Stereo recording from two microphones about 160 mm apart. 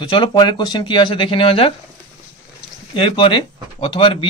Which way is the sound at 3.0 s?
30° left (ahead or behind).